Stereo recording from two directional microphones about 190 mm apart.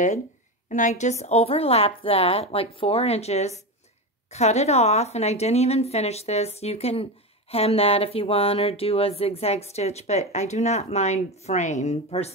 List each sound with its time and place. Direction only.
0.7 s a woman's voice: 40° left (ahead or behind)